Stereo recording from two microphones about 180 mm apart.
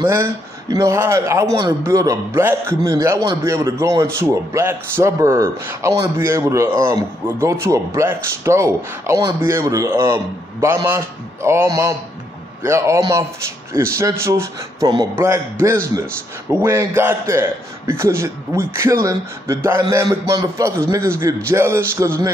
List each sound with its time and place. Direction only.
0.1 s a man's voice: 15° right (ahead or behind)
16.4 s a man's voice: 15° right (ahead or behind)